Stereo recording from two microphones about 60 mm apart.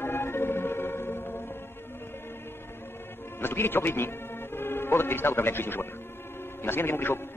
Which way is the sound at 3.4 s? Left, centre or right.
Left.